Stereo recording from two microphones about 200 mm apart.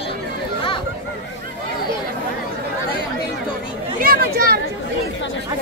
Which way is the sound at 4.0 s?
50° right (ahead or behind).